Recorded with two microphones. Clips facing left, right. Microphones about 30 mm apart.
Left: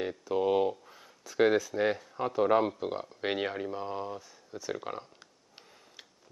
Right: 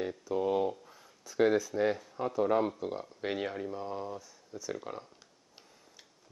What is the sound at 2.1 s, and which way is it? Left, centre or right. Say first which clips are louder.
Speech: left 4 dB; left.